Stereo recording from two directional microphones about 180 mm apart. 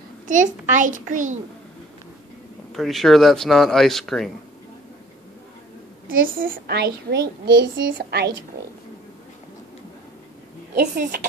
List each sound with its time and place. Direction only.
0.3 s a child's voice: 45° right (ahead or behind)
2.7 s speech: centre (ahead or behind)
6.2 s a woman's voice: 50° right (ahead or behind)
10.7 s a woman's voice: 60° right (ahead or behind)